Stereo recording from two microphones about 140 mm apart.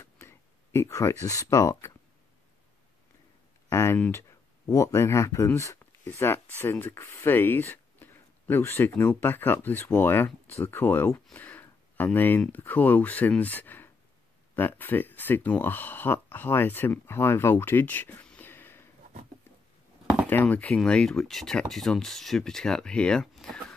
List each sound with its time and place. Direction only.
0.0 s a sound: 20° left (ahead or behind)
3.7 s speech: 15° left (ahead or behind)
20.2 s speech: 15° left (ahead or behind)